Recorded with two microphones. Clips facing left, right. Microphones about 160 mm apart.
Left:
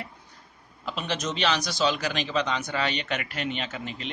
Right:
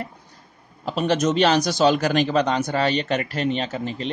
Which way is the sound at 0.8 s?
45° right (ahead or behind).